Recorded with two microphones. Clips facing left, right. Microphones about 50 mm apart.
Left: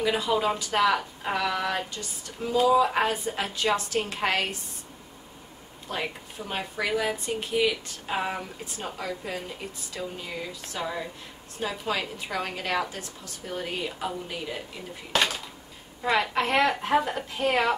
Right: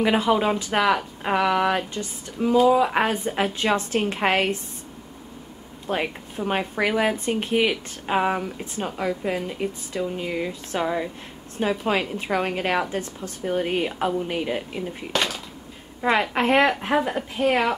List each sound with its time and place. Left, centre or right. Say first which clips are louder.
0.0 s a woman's voice: right 5 dB; right
5.9 s a woman's voice: right 6 dB; right
15.1 s a sound: even; centre
16.0 s speech: right 4 dB; right
16.9 s a woman's voice: right 2 dB; centre